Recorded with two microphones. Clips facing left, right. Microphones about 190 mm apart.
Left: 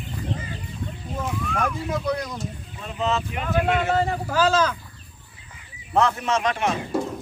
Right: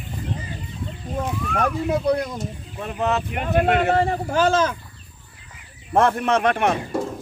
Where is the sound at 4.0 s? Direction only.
25° right (ahead or behind).